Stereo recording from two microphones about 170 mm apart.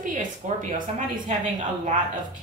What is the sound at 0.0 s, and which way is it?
Speech, 50° right (ahead or behind).